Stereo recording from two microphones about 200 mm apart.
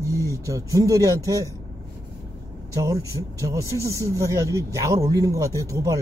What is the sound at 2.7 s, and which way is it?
Speech, 15° right (ahead or behind).